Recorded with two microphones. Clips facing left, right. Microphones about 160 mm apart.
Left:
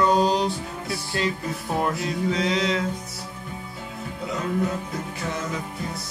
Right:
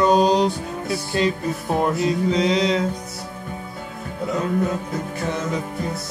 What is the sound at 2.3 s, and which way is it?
Music, 20° right (ahead or behind).